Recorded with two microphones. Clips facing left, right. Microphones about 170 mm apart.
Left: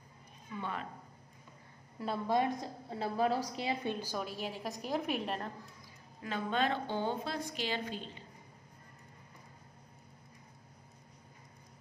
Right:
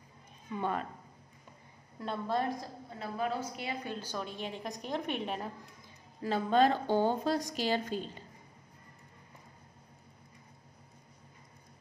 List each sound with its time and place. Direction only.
0.6 s speech: 45° right (ahead or behind)
2.0 s a woman's voice: 10° left (ahead or behind)
2.9 s a woman's voice: 35° left (ahead or behind)
3.9 s a woman's voice: 10° left (ahead or behind)
6.2 s a woman's voice: 35° right (ahead or behind)